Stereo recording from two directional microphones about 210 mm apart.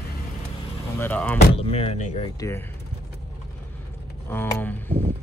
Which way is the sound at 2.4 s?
15° left (ahead or behind).